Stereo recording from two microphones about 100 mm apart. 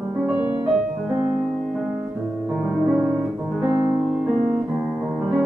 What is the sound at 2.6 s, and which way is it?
Music, 10° right (ahead or behind).